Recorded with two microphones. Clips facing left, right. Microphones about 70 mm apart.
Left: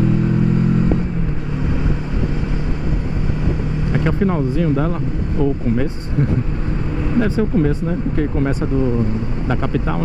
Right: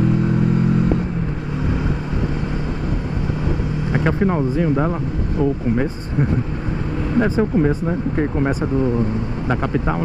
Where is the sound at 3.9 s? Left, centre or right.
Centre.